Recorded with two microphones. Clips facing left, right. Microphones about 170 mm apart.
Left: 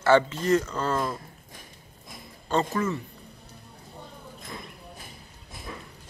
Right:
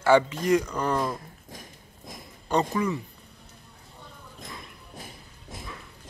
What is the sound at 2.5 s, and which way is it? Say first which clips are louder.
Speech: right 1 dB; 15° right (ahead or behind).